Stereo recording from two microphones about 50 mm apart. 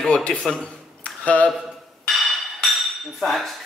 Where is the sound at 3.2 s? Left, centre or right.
Centre.